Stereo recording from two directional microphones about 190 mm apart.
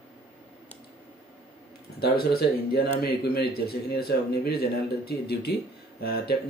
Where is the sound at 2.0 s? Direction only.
55° left (ahead or behind).